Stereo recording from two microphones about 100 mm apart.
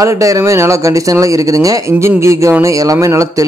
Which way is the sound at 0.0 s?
35° right (ahead or behind).